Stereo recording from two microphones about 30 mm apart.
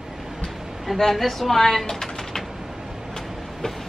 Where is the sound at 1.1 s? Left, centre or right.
Centre.